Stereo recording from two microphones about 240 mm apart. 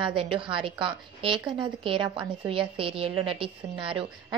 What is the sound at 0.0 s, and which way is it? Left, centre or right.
A woman's voice, right.